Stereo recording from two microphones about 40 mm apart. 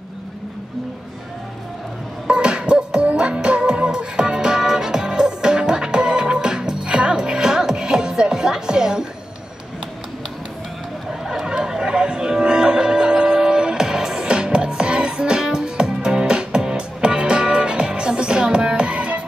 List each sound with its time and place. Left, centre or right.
2.2 s music: right
11.1 s music: centre